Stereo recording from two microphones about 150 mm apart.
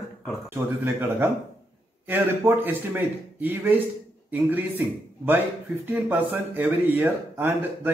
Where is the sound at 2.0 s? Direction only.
15° right (ahead or behind).